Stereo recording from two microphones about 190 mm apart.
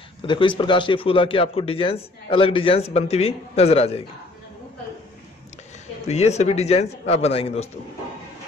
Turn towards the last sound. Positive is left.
turn(degrees=30)  # may be behind; listen again after turning